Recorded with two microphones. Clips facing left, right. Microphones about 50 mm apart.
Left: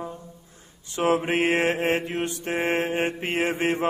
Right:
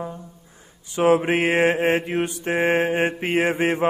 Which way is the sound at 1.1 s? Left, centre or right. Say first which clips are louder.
Right 3 dB; centre.